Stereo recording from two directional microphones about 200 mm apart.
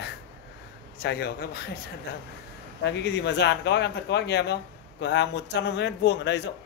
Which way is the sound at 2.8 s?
60° left (ahead or behind).